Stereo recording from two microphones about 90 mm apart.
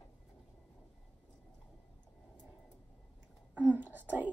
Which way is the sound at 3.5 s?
20° right (ahead or behind).